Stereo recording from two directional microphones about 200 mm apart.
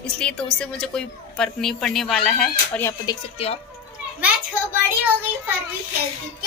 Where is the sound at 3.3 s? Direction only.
30° left (ahead or behind).